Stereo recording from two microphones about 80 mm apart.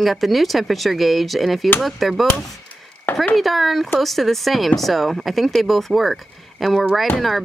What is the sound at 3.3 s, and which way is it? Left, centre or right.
Speech, centre.